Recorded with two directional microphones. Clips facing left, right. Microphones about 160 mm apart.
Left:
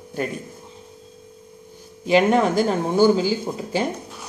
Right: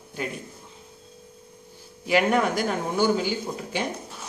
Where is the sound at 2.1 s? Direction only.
25° left (ahead or behind).